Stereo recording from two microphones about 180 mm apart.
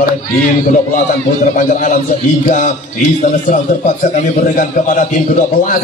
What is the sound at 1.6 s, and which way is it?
A man's voice, 45° left (ahead or behind).